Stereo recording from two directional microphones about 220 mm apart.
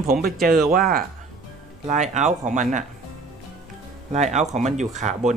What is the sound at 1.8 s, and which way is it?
Speech, 30° right (ahead or behind).